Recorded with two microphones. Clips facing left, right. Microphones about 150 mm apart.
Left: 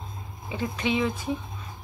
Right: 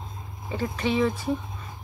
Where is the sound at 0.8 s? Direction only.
15° left (ahead or behind).